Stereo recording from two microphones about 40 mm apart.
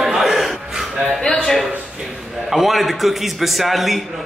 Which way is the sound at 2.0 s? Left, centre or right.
Centre.